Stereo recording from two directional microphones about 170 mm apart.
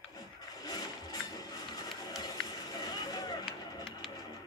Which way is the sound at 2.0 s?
20° left (ahead or behind).